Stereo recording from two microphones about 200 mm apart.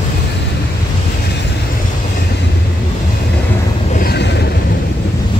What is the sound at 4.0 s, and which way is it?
Vehicle, 55° left (ahead or behind).